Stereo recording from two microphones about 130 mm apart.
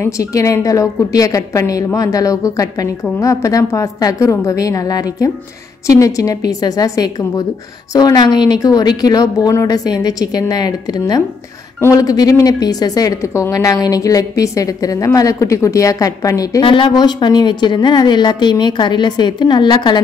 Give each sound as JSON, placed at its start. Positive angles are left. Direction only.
{"t": 0.0, "sound": "a woman's voice", "side_deg": 25}
{"t": 16.6, "sound": "a woman's voice", "side_deg": 40}